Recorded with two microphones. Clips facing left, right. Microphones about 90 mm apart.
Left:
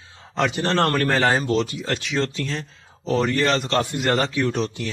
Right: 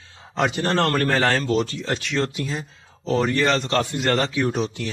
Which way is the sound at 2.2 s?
10° right (ahead or behind).